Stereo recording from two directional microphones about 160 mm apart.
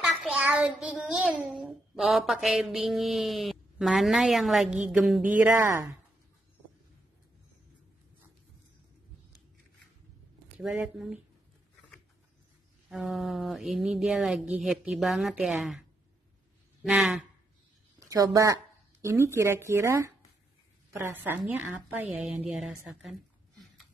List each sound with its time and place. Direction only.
0.0 s child singing: centre (ahead or behind)
0.5 s a child's voice: 5° right (ahead or behind)
12.9 s a child's voice: centre (ahead or behind)
16.8 s a child's voice: 5° right (ahead or behind)
17.9 s a woman's voice: 20° right (ahead or behind); by 23.1 s centre (ahead or behind)